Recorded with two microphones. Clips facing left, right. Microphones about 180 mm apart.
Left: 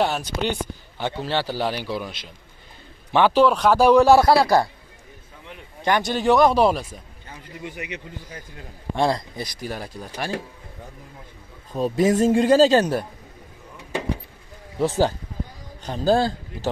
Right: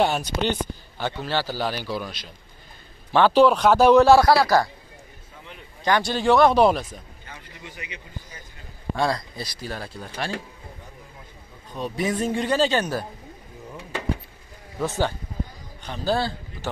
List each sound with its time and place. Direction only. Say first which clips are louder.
0.0 s speech: right 1 dB; centre (ahead or behind)
0.5 s a man's voice: right 1 dB; 20° left (ahead or behind)
5.9 s speech: left 1 dB; 20° left (ahead or behind)
6.4 s speech: even; 5° left (ahead or behind)
7.6 s a man's voice: left 8 dB; 55° left (ahead or behind)
8.9 s speech: left 3 dB; 25° left (ahead or behind)
11.8 s a man's voice: left 7 dB; 45° left (ahead or behind)
14.8 s a man's voice: left 5 dB; 35° left (ahead or behind)